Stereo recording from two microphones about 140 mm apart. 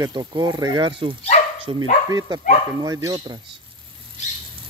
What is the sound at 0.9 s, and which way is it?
Speech, 35° right (ahead or behind).